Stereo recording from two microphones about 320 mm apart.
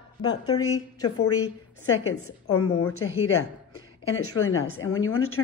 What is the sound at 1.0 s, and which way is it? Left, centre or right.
A woman's voice, left.